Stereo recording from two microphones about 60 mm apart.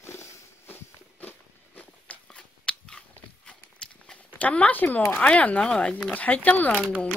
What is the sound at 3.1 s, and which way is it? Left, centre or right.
Walk, centre.